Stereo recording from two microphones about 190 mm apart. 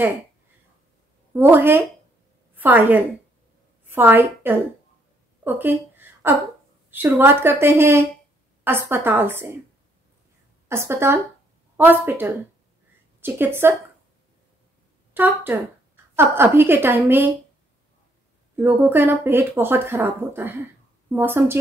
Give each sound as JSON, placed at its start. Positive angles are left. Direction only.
{"t": 1.3, "sound": "a woman's voice", "side_deg": -10}
{"t": 5.4, "sound": "a sound", "side_deg": -10}
{"t": 6.9, "sound": "speech", "side_deg": -10}
{"t": 10.7, "sound": "speech", "side_deg": -15}
{"t": 15.1, "sound": "speech", "side_deg": -10}
{"t": 18.6, "sound": "speech", "side_deg": -10}